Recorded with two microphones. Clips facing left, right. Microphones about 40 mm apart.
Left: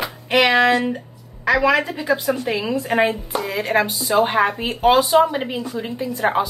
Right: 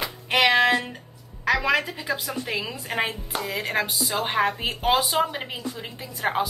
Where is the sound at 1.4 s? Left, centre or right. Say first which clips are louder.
Left 5 dB; centre.